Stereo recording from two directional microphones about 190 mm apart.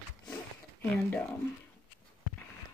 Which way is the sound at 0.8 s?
10° left (ahead or behind).